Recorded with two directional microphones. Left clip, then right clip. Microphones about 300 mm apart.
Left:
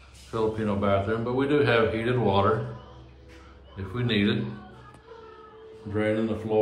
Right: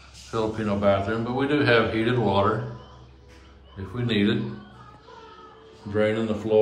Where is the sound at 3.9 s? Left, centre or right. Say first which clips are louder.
Right 1 dB; centre.